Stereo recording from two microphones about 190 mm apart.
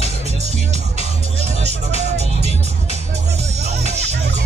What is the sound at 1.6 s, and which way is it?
Music, 35° right (ahead or behind).